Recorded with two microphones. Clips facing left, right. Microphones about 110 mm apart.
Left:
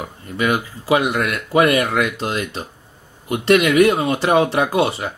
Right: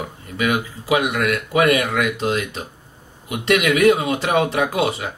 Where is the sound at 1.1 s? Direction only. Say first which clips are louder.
Left 2 dB; 35° left (ahead or behind).